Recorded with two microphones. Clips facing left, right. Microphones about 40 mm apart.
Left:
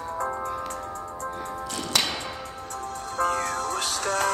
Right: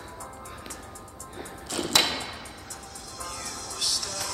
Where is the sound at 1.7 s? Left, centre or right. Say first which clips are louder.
Right 2 dB; centre.